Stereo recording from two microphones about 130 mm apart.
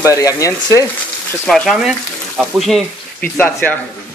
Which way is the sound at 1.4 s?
Centre (ahead or behind).